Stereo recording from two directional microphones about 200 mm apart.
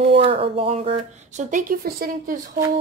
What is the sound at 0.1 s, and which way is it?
A woman's voice, 30° right (ahead or behind).